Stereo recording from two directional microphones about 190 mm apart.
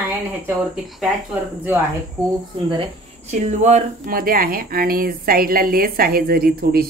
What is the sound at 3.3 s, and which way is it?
Speech, 35° right (ahead or behind).